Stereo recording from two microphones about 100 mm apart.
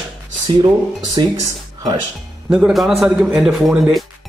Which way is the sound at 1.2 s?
45° right (ahead or behind).